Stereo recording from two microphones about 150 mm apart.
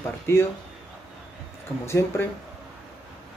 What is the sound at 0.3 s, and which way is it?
Speech, 15° left (ahead or behind).